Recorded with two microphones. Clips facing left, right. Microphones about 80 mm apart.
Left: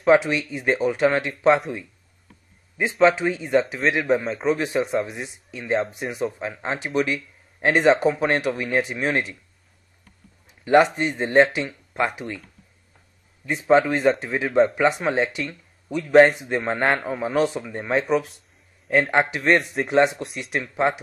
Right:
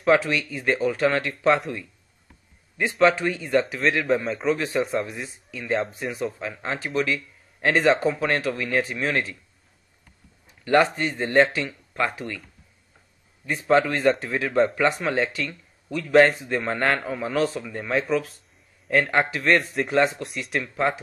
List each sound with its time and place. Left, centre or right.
0.1 s speech: left
2.8 s speech: left
10.6 s speech: centre
13.5 s speech: centre